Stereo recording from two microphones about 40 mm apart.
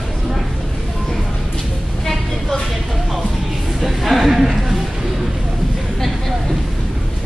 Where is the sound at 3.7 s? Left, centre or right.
Centre.